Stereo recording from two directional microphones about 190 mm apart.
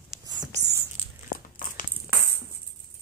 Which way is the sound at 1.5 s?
45° left (ahead or behind).